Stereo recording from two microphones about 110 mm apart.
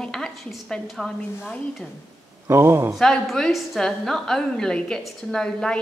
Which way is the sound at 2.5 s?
25° right (ahead or behind).